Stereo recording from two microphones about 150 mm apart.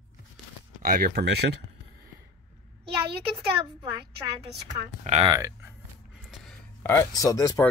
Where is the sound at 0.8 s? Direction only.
80° right.